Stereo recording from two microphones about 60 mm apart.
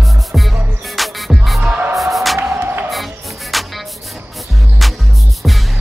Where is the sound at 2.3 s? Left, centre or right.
Right.